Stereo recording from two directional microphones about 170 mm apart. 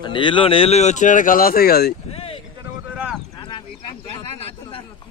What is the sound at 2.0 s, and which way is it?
Vehicle, 35° left (ahead or behind).